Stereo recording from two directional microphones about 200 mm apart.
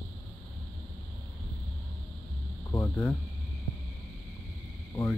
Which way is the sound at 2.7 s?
15° left (ahead or behind).